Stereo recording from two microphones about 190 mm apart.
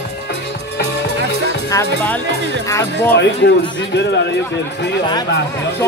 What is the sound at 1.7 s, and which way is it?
Speech, 15° left (ahead or behind).